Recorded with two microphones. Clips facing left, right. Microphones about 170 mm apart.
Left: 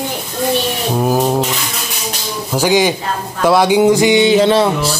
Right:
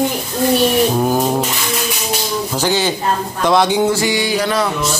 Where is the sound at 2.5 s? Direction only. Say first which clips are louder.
Left 6 dB; 10° left (ahead or behind); by 4.9 s 30° left (ahead or behind).